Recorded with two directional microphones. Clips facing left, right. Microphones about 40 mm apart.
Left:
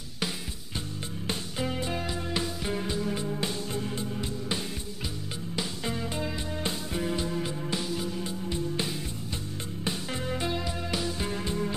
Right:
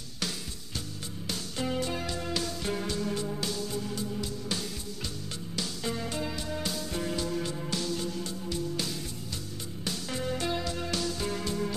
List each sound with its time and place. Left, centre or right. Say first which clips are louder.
2.3 s music: left 2 dB; left
7.7 s music: even; left